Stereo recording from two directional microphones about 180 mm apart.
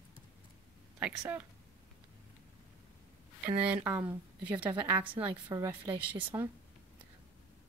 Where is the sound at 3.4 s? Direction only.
5° right (ahead or behind).